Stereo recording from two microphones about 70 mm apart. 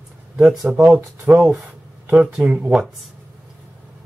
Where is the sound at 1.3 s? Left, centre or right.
Centre.